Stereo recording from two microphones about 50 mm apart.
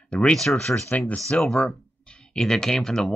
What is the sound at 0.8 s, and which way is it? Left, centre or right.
Speech, left.